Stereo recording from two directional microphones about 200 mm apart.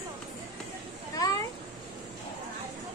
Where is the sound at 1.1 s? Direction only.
20° left (ahead or behind).